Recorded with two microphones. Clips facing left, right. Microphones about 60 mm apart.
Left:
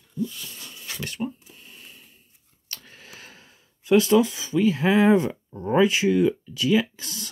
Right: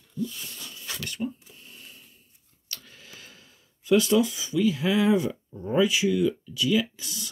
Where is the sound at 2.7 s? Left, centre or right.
Left.